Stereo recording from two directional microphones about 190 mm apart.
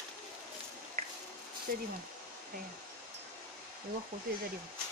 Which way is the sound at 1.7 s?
50° right (ahead or behind).